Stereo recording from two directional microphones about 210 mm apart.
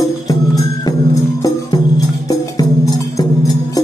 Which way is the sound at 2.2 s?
15° left (ahead or behind).